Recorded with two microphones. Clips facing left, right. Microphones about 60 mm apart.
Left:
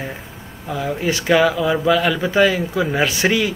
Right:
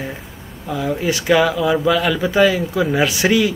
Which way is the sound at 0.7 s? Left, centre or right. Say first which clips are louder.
Right 1 dB; centre.